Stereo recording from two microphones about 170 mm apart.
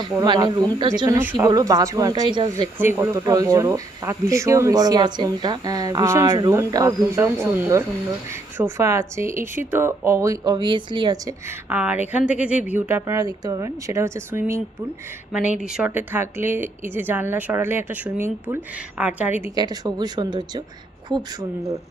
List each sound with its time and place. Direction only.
0.2 s speech: 25° right (ahead or behind)
2.8 s a woman's voice: 15° right (ahead or behind)
11.7 s a woman's voice: 10° right (ahead or behind)
19.5 s speech: 25° right (ahead or behind)